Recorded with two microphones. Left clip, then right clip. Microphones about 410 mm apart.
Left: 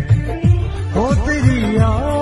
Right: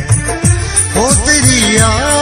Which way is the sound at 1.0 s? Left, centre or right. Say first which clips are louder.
Right 6 dB; right.